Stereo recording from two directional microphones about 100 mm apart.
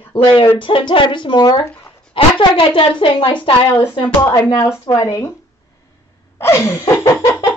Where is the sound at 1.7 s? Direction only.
20° left (ahead or behind).